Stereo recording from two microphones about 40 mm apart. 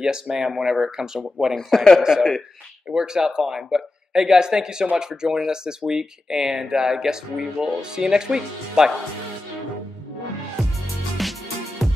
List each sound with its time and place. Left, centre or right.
0.0 s speech: centre
1.5 s speech: centre
2.9 s speech: centre
11.2 s music: centre